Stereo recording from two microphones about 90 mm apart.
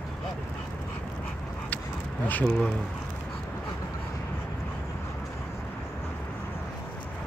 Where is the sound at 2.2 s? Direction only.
20° left (ahead or behind).